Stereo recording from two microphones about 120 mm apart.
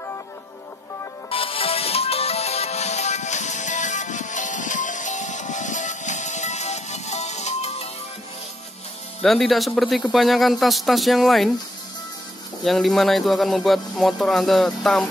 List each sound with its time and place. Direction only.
1.3 s music: 50° left (ahead or behind)
9.2 s speech: centre (ahead or behind)
12.6 s speech: centre (ahead or behind)